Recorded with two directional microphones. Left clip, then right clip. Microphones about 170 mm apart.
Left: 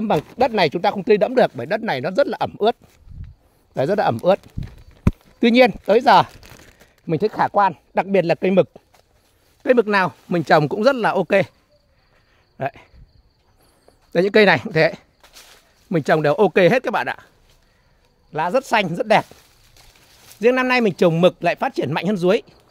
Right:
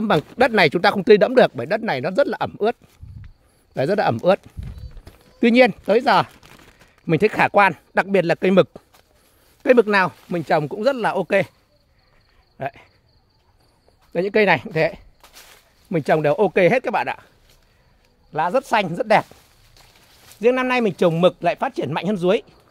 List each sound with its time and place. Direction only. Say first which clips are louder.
0.4 s speech: right 3 dB; 10° right (ahead or behind)
5.4 s speech: left 1 dB; 5° left (ahead or behind)
7.1 s speech: right 2 dB; 10° right (ahead or behind)
7.9 s a man's voice: even; 5° left (ahead or behind)
9.6 s a sound: right 1 dB; 5° right (ahead or behind)
9.8 s a man's voice: even; 10° left (ahead or behind)
10.3 s speech: left 7 dB; 40° left (ahead or behind)
12.5 s cricket: left 3 dB; 30° left (ahead or behind)
14.1 s speech: left 3 dB; 35° left (ahead or behind)
15.9 s a man's voice: left 1 dB; 20° left (ahead or behind)
18.3 s a man's voice: even; 20° left (ahead or behind)
20.2 s a man's voice: left 1 dB; 30° left (ahead or behind)